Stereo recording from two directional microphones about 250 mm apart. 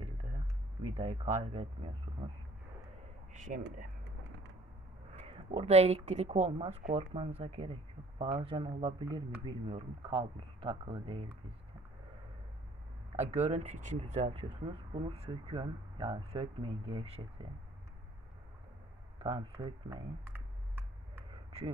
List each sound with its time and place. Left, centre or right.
0.9 s speech: right
3.4 s speech: right
5.1 s speech: right
13.2 s speech: right
19.1 s speech: right